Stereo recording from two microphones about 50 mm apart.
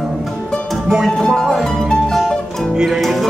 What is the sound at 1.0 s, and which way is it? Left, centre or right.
Music, centre.